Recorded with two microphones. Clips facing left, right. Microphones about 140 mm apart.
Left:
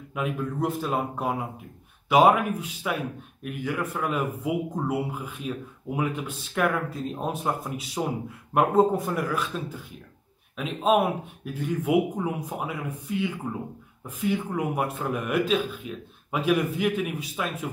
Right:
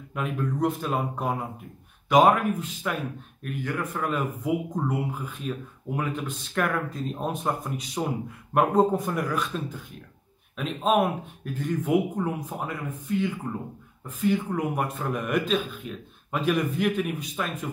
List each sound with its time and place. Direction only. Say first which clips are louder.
0.1 s speech: even; 5° left (ahead or behind)